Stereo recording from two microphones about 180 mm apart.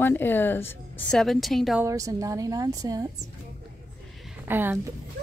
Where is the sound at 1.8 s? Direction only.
20° right (ahead or behind).